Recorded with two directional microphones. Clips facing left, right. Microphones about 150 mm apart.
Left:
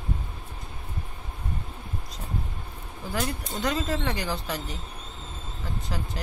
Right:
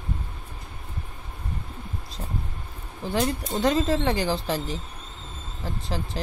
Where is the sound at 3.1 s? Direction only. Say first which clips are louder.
Right 5 dB; 25° right (ahead or behind).